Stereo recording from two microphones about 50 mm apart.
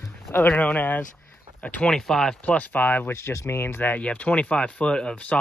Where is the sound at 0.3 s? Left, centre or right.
Left.